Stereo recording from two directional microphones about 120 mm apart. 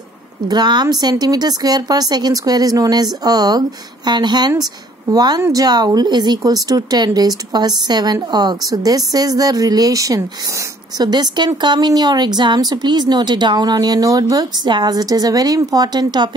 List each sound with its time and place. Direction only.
0.5 s a woman's voice: 35° right (ahead or behind)